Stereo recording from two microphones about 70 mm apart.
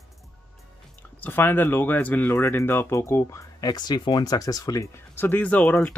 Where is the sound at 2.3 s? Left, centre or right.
Left.